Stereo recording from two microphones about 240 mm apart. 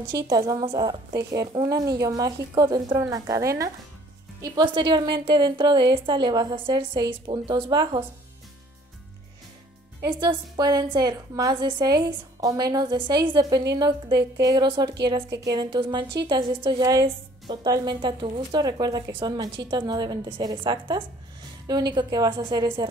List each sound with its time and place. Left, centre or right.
0.3 s a woman's voice: centre
10.6 s a woman's voice: centre